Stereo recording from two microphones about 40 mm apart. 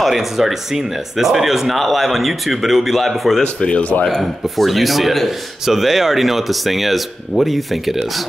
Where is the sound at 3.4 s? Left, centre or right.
Left.